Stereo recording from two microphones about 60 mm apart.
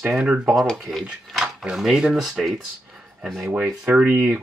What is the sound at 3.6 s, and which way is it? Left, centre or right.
Speech, centre.